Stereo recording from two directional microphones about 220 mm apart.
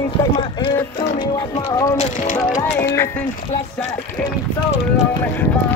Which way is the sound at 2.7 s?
10° left (ahead or behind).